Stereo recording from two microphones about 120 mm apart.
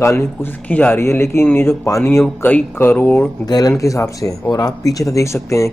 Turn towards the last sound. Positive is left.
turn(degrees=25)  # may be behind; listen again after turning